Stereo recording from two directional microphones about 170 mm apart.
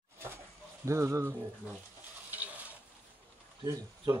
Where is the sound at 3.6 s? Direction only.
25° right (ahead or behind).